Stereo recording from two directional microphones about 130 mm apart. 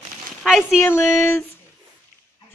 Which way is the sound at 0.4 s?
5° right (ahead or behind).